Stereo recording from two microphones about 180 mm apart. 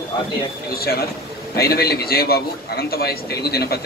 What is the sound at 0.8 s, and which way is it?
A man's voice, 55° left (ahead or behind).